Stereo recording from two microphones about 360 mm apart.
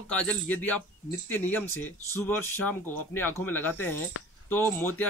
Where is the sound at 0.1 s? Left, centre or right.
Centre.